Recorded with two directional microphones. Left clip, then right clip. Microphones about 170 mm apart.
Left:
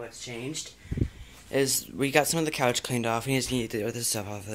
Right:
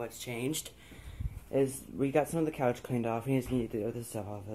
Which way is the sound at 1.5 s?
20° left (ahead or behind).